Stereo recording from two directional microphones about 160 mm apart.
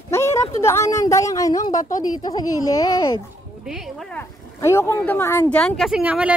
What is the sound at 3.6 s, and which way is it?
Speech, centre (ahead or behind).